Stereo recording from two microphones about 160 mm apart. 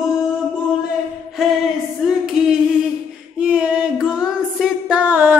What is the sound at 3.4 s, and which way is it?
Music, 10° right (ahead or behind).